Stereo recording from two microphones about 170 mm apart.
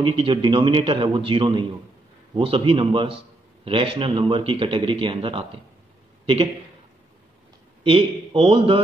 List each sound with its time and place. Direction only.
0.0 s a man's voice: 30° right (ahead or behind)
7.8 s speech: 35° right (ahead or behind)